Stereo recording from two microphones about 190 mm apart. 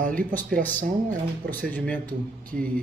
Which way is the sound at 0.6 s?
10° left (ahead or behind).